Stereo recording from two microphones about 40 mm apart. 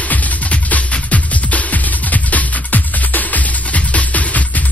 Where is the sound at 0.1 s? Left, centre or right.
Left.